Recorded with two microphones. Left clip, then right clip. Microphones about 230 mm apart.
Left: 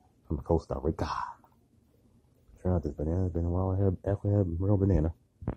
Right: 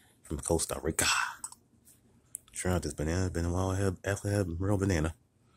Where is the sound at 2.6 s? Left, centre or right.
Centre.